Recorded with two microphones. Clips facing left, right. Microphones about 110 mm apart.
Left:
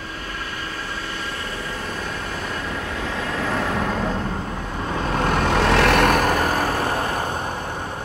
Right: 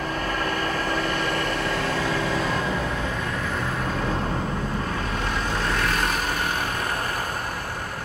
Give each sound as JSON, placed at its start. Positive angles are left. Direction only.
{"t": 5.3, "sound": "vehicle", "side_deg": 75}
{"t": 6.4, "sound": "vehicle", "side_deg": 40}